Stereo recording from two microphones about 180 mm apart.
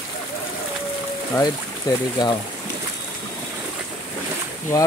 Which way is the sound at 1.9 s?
20° left (ahead or behind).